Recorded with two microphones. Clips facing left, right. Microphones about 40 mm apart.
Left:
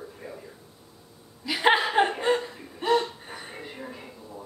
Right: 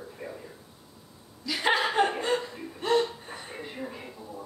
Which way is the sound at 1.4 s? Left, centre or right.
Left.